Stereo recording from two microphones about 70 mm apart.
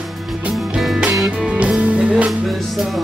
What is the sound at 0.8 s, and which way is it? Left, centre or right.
Music, centre.